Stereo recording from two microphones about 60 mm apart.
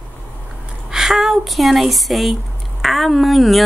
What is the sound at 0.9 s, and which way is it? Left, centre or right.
A woman's voice, centre.